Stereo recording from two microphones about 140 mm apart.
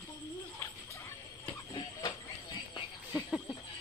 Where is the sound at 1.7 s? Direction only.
30° left (ahead or behind).